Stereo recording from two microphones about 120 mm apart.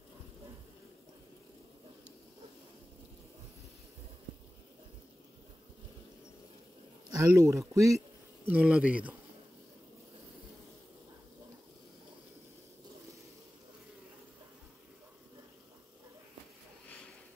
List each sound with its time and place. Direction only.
7.1 s speech: 25° right (ahead or behind)
8.5 s a man's voice: 10° right (ahead or behind)